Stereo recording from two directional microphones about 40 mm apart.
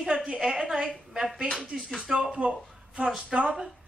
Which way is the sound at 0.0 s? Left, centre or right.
Centre.